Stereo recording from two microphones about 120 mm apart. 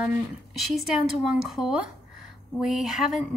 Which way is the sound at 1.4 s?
5° right (ahead or behind).